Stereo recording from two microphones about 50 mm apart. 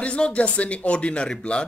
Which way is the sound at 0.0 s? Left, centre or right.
Left.